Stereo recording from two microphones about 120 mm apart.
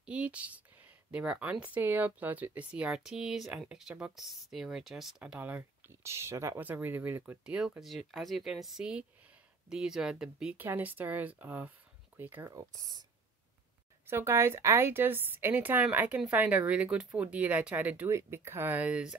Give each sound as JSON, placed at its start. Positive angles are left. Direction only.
{"t": 0.0, "sound": "speech", "side_deg": -10}
{"t": 10.6, "sound": "speech", "side_deg": -15}
{"t": 14.0, "sound": "speech", "side_deg": -20}